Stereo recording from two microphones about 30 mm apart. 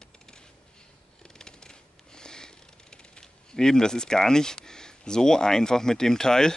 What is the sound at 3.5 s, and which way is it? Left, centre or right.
Speech, left.